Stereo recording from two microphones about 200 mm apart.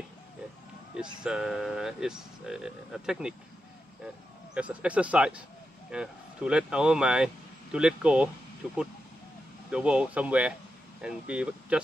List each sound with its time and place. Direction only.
1.2 s speech: 5° right (ahead or behind)
4.6 s speech: 5° right (ahead or behind)